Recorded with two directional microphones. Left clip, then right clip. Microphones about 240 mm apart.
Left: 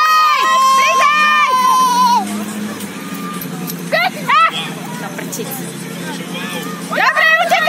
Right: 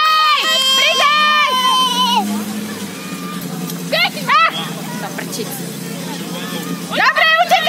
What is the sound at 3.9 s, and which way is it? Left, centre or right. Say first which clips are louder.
Music: left 1 dB; right.